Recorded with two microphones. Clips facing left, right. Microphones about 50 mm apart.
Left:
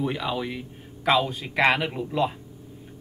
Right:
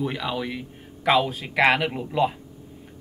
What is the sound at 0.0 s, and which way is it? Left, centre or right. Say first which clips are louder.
Speech: even; centre.